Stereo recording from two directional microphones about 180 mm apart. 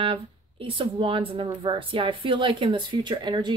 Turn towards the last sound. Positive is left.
turn(degrees=-25)  # may be behind; listen again after turning